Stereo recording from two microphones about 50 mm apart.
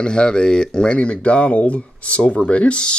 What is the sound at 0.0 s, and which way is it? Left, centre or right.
Speech, centre.